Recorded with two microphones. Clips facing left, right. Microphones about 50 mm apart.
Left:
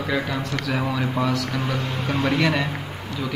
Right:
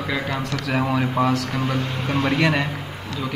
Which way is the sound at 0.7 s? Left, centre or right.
Centre.